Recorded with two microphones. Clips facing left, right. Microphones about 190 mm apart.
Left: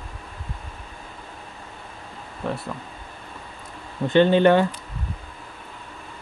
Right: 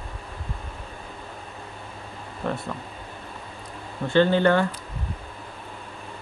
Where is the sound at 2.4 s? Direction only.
Centre (ahead or behind).